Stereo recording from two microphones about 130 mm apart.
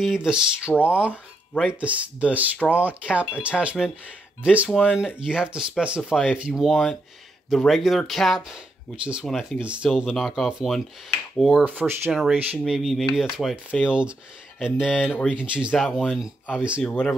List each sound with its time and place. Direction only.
0.0 s speech: 5° right (ahead or behind)
7.4 s chopping: centre (ahead or behind)
14.6 s speech: 5° right (ahead or behind)
15.3 s chopping: 10° right (ahead or behind)
16.5 s speech: 10° right (ahead or behind)
16.8 s speech: 10° left (ahead or behind)